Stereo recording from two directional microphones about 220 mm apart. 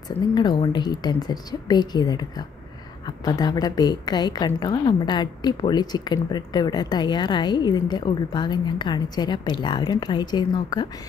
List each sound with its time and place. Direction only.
0.3 s a woman's voice: 20° left (ahead or behind)